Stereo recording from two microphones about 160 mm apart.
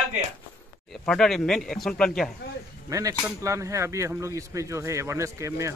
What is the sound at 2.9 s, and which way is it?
Speech, 20° right (ahead or behind).